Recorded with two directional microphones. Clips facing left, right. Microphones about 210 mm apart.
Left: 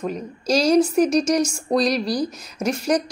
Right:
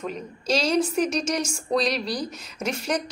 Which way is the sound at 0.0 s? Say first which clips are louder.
Left 5 dB; 35° left (ahead or behind).